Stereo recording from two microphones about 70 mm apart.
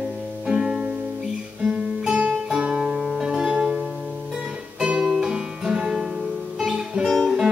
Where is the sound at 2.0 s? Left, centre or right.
Centre.